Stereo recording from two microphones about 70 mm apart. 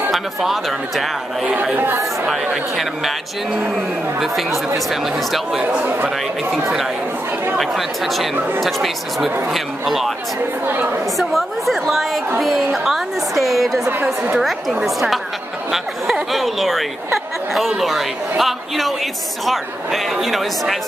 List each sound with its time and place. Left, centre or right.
0.1 s a man's voice: centre
1.4 s a woman's voice: right
2.2 s a woman's voice: centre
5.6 s a woman's voice: centre
7.5 s a man's voice: centre
10.7 s a woman's voice: right
11.1 s a man's voice: centre
14.0 s a woman's voice: centre
14.4 s a man's voice: centre